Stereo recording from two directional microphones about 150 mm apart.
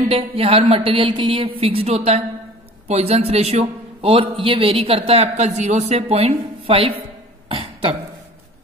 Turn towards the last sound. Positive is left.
turn(degrees=-35)  # may be behind; listen again after turning